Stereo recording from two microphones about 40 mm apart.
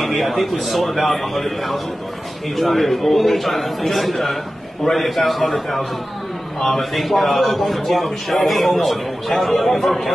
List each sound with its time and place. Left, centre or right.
0.0 s a man's voice: centre